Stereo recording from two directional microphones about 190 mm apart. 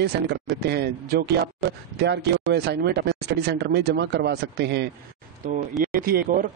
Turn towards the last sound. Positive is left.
turn(degrees=-50)  # may be behind; listen again after turning